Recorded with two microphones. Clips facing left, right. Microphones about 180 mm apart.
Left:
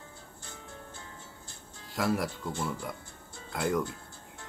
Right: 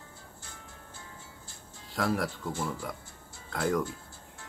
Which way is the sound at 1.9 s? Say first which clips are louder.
Even; centre (ahead or behind).